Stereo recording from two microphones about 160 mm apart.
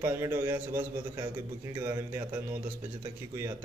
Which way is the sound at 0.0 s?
15° right (ahead or behind).